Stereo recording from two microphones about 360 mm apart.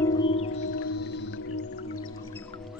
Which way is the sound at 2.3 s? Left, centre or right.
Centre.